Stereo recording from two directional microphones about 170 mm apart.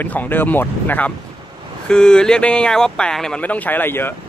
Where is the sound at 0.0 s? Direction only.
10° left (ahead or behind).